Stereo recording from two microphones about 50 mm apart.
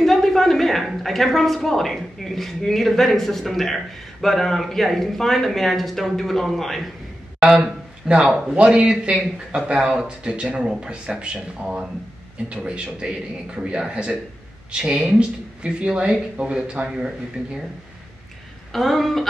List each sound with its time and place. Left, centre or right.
0.0 s a sound: centre
0.8 s speech: centre
7.4 s speech: right
18.7 s speech: centre